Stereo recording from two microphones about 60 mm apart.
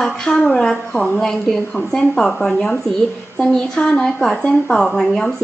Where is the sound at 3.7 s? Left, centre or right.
Centre.